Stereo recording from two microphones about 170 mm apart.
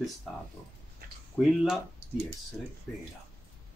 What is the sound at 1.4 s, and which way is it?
Speech, 5° left (ahead or behind).